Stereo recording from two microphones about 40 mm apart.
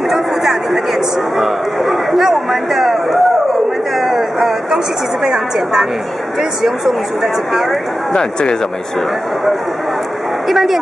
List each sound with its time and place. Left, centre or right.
0.1 s chatter: centre
1.4 s a sound: centre
5.2 s a woman's voice: centre
8.2 s speech: centre
10.5 s speech: centre